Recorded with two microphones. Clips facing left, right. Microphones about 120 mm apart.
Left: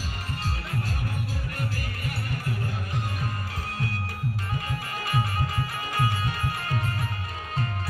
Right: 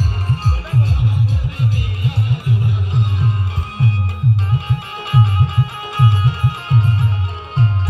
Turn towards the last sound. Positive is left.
turn(degrees=-25)  # may be behind; listen again after turning